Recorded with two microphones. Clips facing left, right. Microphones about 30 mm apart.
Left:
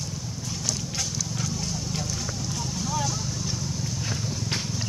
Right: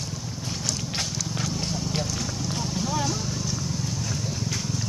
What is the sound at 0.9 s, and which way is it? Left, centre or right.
Horse, right.